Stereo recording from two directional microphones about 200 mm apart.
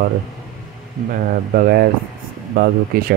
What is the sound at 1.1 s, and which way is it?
Speech, 50° right (ahead or behind).